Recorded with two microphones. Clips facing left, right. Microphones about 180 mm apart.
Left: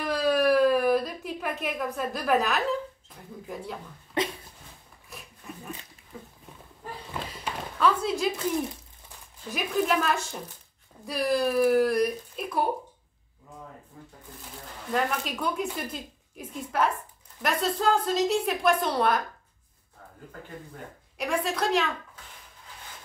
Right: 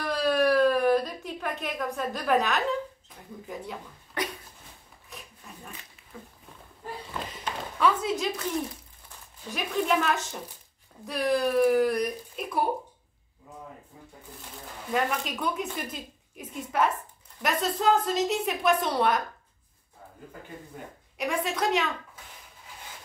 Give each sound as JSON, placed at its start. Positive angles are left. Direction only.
{"t": 0.0, "sound": "a sound", "side_deg": 5}
{"t": 3.4, "sound": "speech", "side_deg": 0}
{"t": 4.2, "sound": "dog", "side_deg": 25}
{"t": 5.1, "sound": "a sound", "side_deg": 0}
{"t": 7.7, "sound": "speech", "side_deg": 0}
{"t": 9.5, "sound": "speech", "side_deg": 5}
{"t": 14.4, "sound": "speech", "side_deg": -5}
{"t": 20.7, "sound": "speech", "side_deg": -5}